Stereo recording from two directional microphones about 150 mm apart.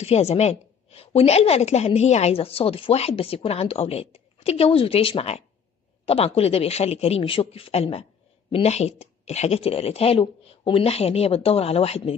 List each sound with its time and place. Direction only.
0.0 s a woman's voice: 45° left (ahead or behind)